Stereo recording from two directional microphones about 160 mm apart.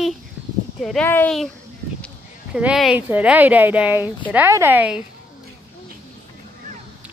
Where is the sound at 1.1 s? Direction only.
10° left (ahead or behind).